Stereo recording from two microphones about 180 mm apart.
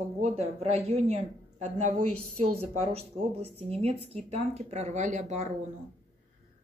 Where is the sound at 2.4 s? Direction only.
35° right (ahead or behind).